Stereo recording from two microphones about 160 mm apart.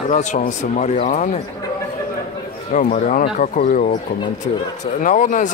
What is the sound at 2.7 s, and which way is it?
Speech, 55° left (ahead or behind).